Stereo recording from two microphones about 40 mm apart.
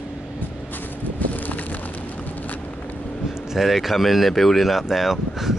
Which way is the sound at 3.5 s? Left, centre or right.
Centre.